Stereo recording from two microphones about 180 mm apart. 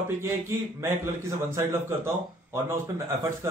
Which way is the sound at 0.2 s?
15° right (ahead or behind).